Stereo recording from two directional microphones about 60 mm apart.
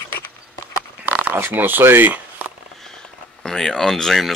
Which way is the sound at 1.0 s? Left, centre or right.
Right.